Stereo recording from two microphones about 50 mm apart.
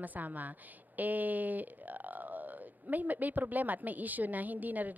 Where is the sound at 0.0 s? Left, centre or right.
Right.